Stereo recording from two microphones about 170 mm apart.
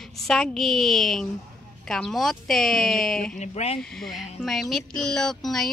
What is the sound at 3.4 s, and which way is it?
Speech, 40° left (ahead or behind).